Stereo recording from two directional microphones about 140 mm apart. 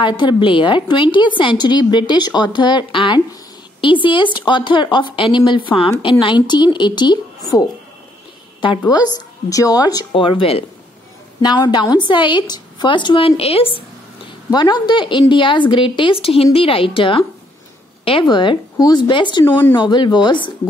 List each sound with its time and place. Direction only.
0.0 s a woman's voice: 35° left (ahead or behind)
14.5 s a woman's voice: 30° left (ahead or behind)
19.4 s speech: 15° left (ahead or behind)
19.7 s a woman's voice: 35° left (ahead or behind)